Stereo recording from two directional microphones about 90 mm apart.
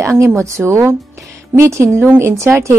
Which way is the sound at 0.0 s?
30° right (ahead or behind).